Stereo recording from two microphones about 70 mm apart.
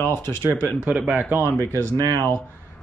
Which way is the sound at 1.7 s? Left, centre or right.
Right.